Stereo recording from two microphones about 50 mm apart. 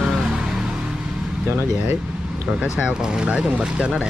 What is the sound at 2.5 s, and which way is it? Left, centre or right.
Speech, centre.